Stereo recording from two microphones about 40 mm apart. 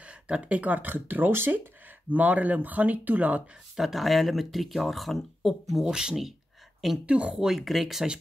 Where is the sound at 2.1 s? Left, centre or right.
Right.